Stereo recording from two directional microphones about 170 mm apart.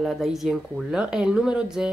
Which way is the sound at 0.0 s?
Centre (ahead or behind).